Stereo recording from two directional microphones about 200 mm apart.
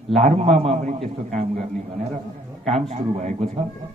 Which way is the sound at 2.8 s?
35° right (ahead or behind).